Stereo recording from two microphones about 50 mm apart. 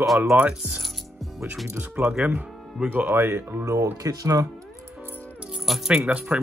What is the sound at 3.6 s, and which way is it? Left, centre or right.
Speech, right.